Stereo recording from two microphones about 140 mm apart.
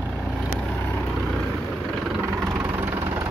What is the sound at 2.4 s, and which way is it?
Vehicle, 10° right (ahead or behind).